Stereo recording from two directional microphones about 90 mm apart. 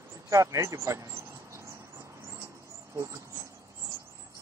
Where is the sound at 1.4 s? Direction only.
30° right (ahead or behind).